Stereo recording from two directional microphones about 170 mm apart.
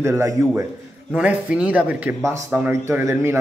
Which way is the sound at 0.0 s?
15° right (ahead or behind).